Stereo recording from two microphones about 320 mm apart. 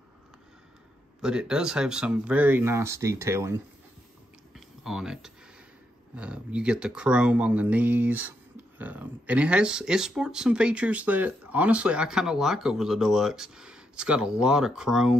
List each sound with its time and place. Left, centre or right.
1.2 s speech: centre
4.6 s a sound: centre
6.1 s speech: centre